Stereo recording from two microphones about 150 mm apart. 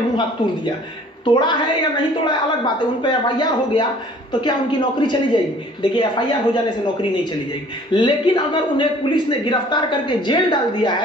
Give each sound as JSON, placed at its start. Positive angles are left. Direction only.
{"t": 1.2, "sound": "a man's voice", "side_deg": 30}